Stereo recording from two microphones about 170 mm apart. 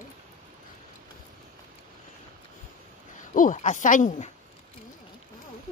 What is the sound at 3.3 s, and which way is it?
A woman's voice, 50° left (ahead or behind).